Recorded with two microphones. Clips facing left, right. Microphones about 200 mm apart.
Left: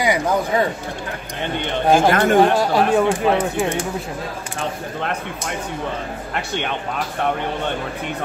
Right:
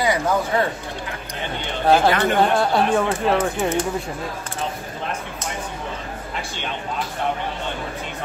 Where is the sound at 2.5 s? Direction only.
10° left (ahead or behind).